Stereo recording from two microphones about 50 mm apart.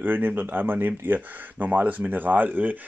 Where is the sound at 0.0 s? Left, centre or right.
Right.